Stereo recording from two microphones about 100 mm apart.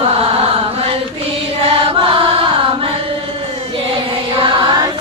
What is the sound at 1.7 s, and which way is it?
Chant, 65° right (ahead or behind).